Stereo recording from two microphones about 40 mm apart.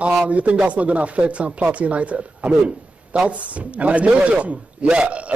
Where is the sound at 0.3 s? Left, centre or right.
Right.